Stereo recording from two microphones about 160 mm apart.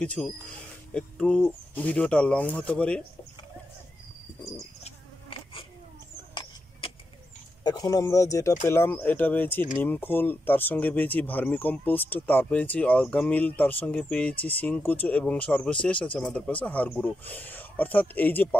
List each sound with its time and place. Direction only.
0.0 s speech: 10° left (ahead or behind)
4.8 s insect: 35° left (ahead or behind)
7.6 s speech: 25° left (ahead or behind)